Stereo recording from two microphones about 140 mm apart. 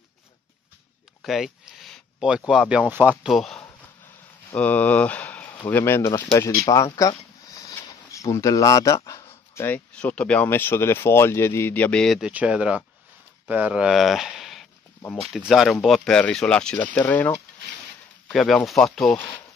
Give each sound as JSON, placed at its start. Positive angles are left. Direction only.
{"t": 1.2, "sound": "speech", "side_deg": 0}
{"t": 3.3, "sound": "speech", "side_deg": 0}
{"t": 12.3, "sound": "speech", "side_deg": -10}
{"t": 18.3, "sound": "speech", "side_deg": 0}